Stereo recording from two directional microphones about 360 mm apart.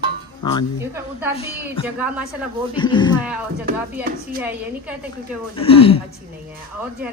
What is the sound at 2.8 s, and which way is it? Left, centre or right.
Speech, centre.